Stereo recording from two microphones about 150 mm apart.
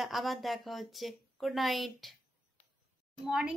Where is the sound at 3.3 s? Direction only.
5° right (ahead or behind).